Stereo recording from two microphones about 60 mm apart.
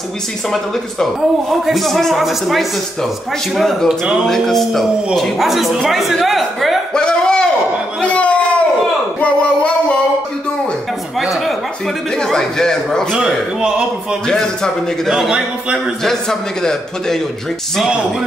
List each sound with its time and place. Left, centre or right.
1.5 s speech: centre
6.9 s a sound: centre
11.1 s a sound: centre
12.2 s a man's voice: centre
14.2 s a man's voice: centre
15.0 s speech: centre
16.0 s a man's voice: centre